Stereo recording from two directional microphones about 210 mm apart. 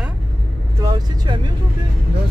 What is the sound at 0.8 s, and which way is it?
Speech, 20° right (ahead or behind).